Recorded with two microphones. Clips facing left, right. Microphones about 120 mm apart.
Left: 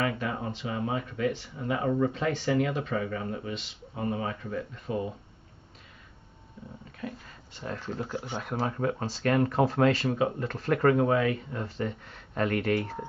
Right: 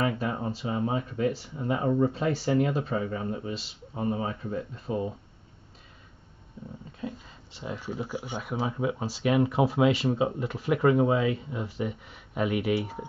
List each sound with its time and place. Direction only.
0.0 s speech: 25° right (ahead or behind)
7.0 s speech: 20° right (ahead or behind)